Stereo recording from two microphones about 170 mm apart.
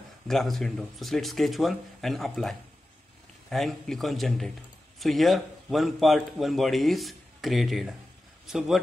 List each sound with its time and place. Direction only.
0.3 s a man's voice: centre (ahead or behind)